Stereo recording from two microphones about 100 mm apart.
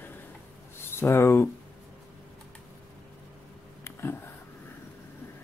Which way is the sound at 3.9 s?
25° left (ahead or behind).